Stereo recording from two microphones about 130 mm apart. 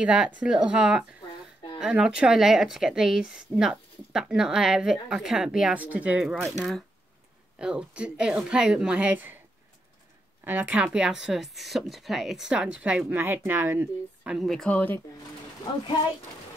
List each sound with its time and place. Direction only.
0.0 s a woman's voice: 10° right (ahead or behind)
7.5 s a woman's voice: 5° right (ahead or behind)
10.4 s speech: 10° right (ahead or behind)
13.2 s a woman's voice: 20° right (ahead or behind)
14.3 s speech: centre (ahead or behind)